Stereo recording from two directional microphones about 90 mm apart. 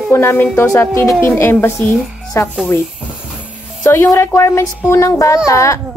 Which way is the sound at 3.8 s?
30° left (ahead or behind).